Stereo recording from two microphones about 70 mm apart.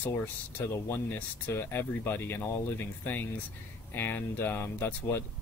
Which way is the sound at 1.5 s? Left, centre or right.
Left.